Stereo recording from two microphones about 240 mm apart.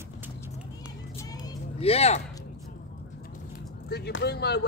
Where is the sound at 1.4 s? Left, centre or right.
Left.